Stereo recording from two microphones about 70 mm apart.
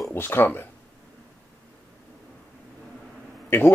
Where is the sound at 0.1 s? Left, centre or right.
Left.